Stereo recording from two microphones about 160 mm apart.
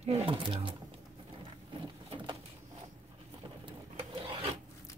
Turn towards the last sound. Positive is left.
turn(degrees=-35)  # may be behind; listen again after turning